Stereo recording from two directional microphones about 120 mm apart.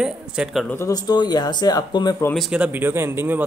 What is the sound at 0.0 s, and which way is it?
Speech, 5° right (ahead or behind).